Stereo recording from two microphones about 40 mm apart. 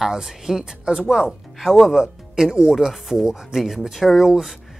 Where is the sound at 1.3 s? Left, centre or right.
Centre.